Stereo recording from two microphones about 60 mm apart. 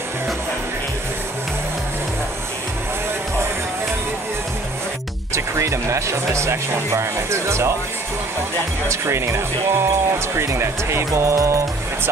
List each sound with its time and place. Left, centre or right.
5.3 s speech: right
8.8 s speech: right
11.1 s music: right